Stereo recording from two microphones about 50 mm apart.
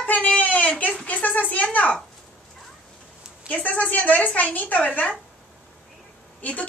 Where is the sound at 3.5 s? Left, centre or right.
Left.